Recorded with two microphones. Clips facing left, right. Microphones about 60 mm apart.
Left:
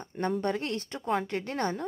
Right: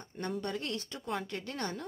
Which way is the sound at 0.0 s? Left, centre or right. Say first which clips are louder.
Left 8 dB; left.